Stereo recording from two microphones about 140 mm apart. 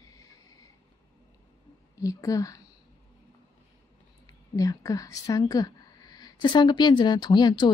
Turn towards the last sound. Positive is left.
turn(degrees=30)  # may be behind; listen again after turning